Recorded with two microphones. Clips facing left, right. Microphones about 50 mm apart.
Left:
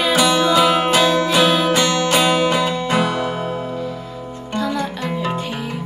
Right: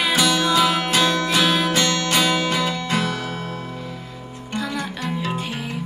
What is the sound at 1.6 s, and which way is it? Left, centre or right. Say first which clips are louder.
Music: left 4 dB; centre.